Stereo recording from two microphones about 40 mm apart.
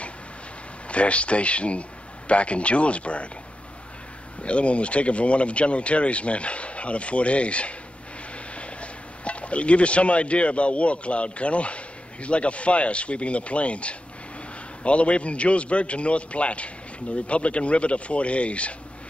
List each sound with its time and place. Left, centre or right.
0.8 s a man's voice: left
4.4 s a man's voice: left